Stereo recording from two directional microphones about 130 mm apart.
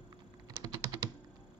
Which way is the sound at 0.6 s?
30° right (ahead or behind).